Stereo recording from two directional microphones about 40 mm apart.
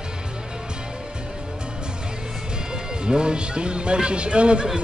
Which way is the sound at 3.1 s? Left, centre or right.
Right.